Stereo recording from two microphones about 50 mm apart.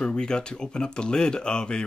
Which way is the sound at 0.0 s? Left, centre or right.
Centre.